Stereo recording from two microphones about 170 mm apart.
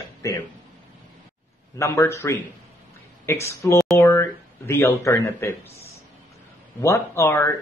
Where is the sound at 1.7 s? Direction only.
15° left (ahead or behind).